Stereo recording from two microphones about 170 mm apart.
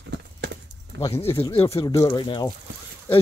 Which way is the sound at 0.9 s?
90° right.